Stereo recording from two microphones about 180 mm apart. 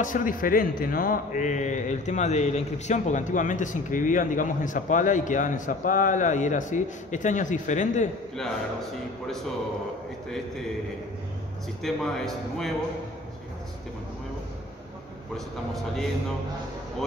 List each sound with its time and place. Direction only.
0.0 s speech: 45° left (ahead or behind)
11.8 s a man's voice: centre (ahead or behind)
15.3 s a man's voice: centre (ahead or behind)